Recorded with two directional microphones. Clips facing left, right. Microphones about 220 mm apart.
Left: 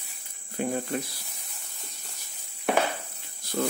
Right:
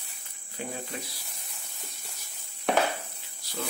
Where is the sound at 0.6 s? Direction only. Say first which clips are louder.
Left 8 dB; 50° left (ahead or behind).